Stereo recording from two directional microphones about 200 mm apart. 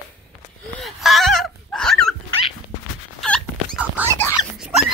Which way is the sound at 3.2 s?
5° left (ahead or behind).